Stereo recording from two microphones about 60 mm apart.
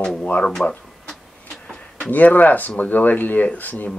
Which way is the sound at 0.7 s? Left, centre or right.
Centre.